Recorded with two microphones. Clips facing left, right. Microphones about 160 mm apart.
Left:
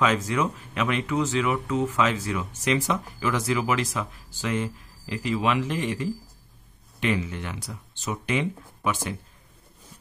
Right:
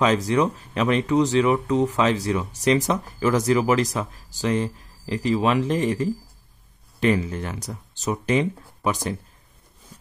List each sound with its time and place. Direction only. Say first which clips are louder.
0.0 s speech: right 4 dB; 35° right (ahead or behind)